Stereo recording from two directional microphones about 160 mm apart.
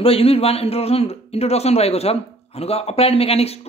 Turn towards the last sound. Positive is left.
turn(degrees=40)  # may be behind; listen again after turning